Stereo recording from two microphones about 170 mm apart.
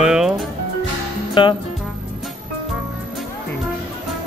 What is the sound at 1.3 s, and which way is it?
Music, 30° left (ahead or behind).